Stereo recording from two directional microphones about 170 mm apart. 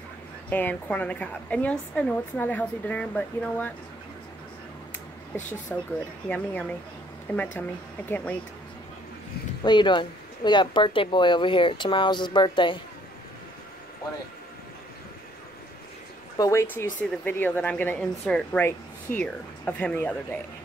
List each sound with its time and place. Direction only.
0.5 s a woman's voice: 10° left (ahead or behind)
5.3 s a woman's voice: 15° left (ahead or behind)
9.6 s speech: 25° left (ahead or behind)
16.3 s a woman's voice: 15° left (ahead or behind)